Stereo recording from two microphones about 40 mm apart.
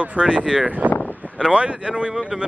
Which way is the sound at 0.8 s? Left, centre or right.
Right.